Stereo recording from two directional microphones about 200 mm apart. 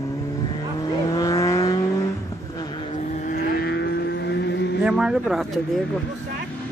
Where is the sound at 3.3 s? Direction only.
50° left (ahead or behind).